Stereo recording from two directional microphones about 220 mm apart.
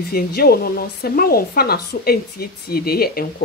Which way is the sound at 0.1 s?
45° left (ahead or behind).